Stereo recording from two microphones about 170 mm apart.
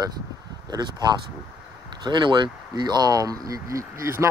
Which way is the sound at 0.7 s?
25° right (ahead or behind).